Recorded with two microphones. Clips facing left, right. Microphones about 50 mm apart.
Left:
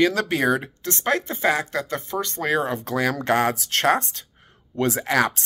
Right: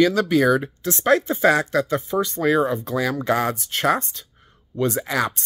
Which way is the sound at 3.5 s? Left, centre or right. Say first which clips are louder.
Left 1 dB; left.